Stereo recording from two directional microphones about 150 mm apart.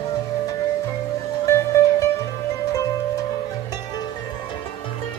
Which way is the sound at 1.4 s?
20° left (ahead or behind).